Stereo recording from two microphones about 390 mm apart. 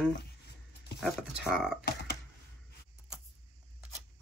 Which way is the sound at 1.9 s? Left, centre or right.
Left.